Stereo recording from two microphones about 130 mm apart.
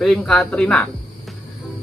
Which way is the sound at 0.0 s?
5° left (ahead or behind).